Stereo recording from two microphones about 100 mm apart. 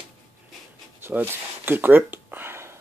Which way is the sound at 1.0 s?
20° right (ahead or behind).